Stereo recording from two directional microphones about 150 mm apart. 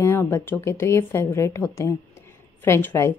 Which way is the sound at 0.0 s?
15° left (ahead or behind).